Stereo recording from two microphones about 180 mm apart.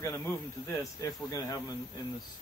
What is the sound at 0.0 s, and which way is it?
A man's voice, 15° left (ahead or behind).